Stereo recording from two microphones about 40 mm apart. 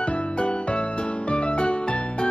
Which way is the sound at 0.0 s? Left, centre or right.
Left.